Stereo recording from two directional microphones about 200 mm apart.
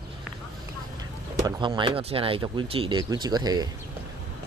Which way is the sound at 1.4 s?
25° right (ahead or behind).